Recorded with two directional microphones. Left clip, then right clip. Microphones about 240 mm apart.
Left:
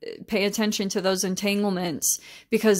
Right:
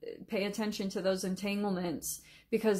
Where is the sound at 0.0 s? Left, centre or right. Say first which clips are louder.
Left 10 dB; left.